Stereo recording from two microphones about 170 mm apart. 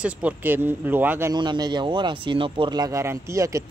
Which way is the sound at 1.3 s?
25° right (ahead or behind).